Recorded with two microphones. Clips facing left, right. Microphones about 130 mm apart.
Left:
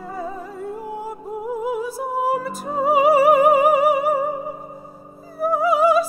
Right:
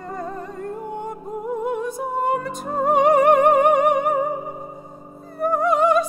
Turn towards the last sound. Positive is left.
turn(degrees=5)  # may be behind; listen again after turning